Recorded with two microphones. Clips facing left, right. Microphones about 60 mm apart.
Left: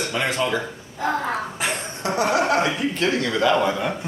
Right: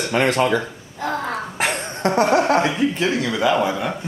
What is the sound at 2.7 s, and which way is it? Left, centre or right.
A man's voice, centre.